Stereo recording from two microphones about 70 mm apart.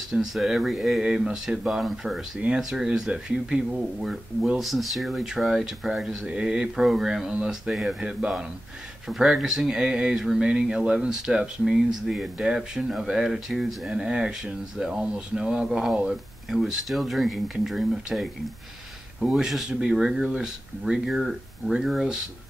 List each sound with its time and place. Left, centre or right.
0.1 s speech: centre
19.3 s speech: centre